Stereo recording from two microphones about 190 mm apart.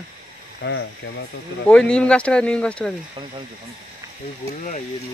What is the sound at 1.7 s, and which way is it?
Speech, 5° left (ahead or behind).